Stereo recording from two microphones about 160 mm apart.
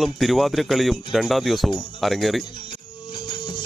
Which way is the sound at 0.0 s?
Centre (ahead or behind).